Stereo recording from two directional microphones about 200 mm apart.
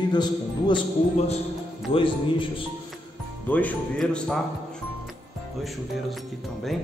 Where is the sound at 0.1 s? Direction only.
20° left (ahead or behind).